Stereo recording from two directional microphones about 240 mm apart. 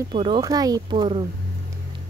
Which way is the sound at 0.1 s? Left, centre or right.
Centre.